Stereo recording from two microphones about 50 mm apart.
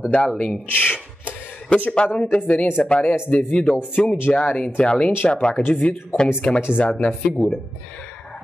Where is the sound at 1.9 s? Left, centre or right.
Left.